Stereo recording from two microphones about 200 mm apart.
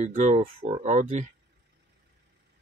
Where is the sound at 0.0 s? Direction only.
35° right (ahead or behind).